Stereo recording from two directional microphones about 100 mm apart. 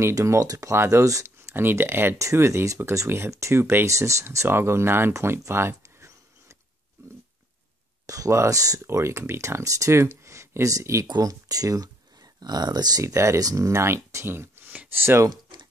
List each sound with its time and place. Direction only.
0.0 s speech: 30° right (ahead or behind)
8.1 s speech: 35° right (ahead or behind)
13.0 s speech: 30° right (ahead or behind)